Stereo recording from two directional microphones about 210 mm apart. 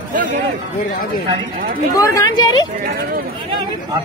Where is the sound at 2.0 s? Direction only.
20° left (ahead or behind).